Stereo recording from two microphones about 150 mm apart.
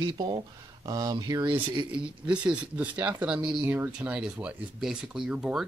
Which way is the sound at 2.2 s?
10° right (ahead or behind).